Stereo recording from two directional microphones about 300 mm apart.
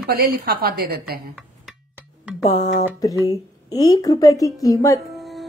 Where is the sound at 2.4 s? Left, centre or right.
Left.